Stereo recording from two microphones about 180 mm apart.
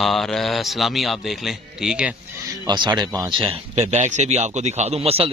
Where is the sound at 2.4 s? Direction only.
25° right (ahead or behind).